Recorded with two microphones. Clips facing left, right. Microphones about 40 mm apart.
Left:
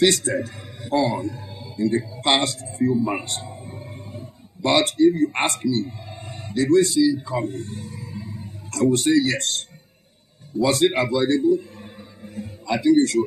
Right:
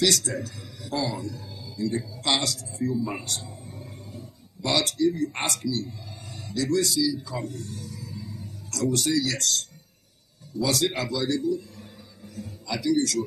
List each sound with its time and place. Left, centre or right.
0.0 s a man's voice: left